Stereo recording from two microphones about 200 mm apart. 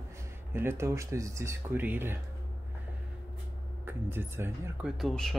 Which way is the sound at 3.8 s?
10° right (ahead or behind).